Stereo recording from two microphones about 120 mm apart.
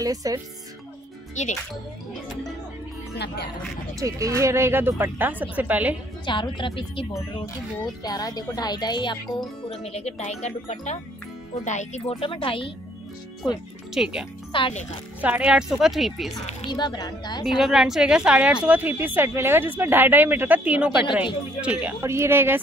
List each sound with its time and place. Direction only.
0.0 s speech: 30° right (ahead or behind)
1.4 s speech: 85° left
4.0 s speech: 25° right (ahead or behind)
6.2 s a woman's voice: 40° left (ahead or behind)
8.0 s speech: 30° left (ahead or behind)
9.7 s speech: 60° left (ahead or behind)
12.2 s a woman's voice: 45° left (ahead or behind)
13.9 s speech: 5° right (ahead or behind)
14.5 s a woman's voice: 45° left (ahead or behind)
15.2 s speech: 10° right (ahead or behind)
16.6 s speech: 35° left (ahead or behind)
17.5 s speech: 5° right (ahead or behind)
22.0 s speech: 20° right (ahead or behind)